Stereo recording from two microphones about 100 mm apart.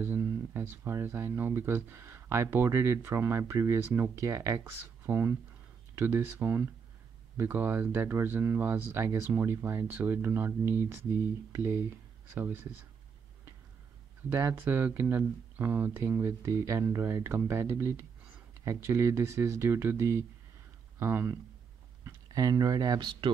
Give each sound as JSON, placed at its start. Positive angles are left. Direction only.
{"t": 0.2, "sound": "speech", "side_deg": -25}
{"t": 14.3, "sound": "speech", "side_deg": -25}
{"t": 22.0, "sound": "speech", "side_deg": -35}